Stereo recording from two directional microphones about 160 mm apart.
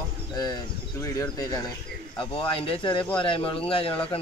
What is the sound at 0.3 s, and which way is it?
Speech, 25° left (ahead or behind).